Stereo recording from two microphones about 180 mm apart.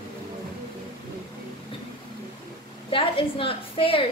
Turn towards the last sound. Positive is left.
turn(degrees=30)  # may be behind; listen again after turning